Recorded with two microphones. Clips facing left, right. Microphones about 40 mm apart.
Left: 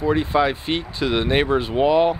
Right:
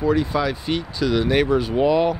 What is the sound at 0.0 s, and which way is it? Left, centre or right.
Speech, left.